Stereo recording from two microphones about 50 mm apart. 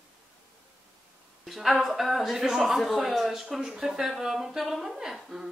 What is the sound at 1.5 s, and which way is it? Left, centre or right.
A man's voice, centre.